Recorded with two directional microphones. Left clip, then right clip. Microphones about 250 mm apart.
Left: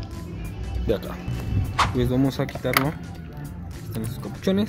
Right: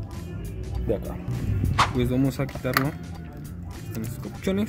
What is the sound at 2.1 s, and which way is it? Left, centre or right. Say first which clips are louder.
Speech: left 2 dB; centre.